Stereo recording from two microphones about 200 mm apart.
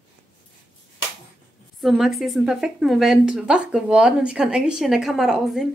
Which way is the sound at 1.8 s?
Centre (ahead or behind).